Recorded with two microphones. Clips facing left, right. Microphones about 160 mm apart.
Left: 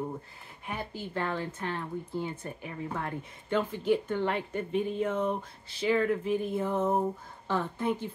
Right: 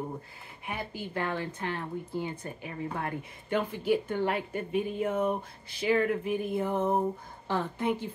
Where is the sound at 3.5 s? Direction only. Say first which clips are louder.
Even; 10° right (ahead or behind).